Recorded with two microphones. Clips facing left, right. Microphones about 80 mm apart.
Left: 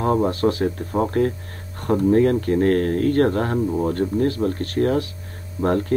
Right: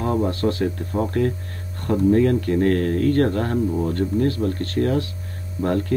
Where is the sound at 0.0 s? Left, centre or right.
Left.